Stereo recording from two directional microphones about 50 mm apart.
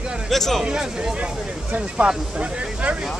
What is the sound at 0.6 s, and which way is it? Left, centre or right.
Speech, centre.